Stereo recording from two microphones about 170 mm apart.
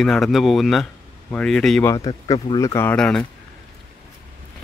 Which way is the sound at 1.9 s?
20° left (ahead or behind).